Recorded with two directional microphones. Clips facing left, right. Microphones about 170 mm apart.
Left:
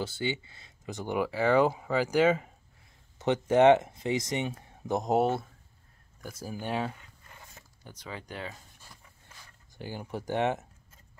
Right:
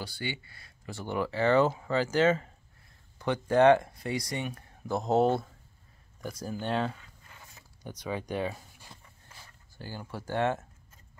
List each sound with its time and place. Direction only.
0.0 s speech: 20° left (ahead or behind)
3.2 s speech: 20° left (ahead or behind)
7.8 s speech: 15° right (ahead or behind)
9.8 s speech: 20° left (ahead or behind)